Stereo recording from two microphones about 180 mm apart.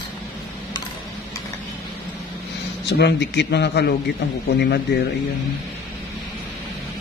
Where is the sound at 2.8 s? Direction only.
70° left (ahead or behind).